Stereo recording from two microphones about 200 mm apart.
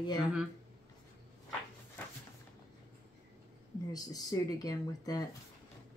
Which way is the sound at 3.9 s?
20° left (ahead or behind).